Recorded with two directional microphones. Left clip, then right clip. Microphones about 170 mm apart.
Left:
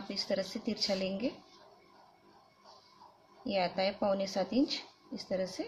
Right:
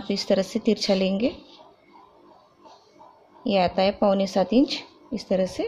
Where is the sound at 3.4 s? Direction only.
45° right (ahead or behind).